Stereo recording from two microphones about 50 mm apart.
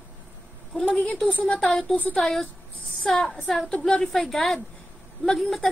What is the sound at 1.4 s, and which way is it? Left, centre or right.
Speech, left.